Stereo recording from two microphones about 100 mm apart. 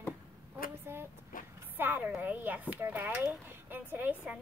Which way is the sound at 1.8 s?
20° right (ahead or behind).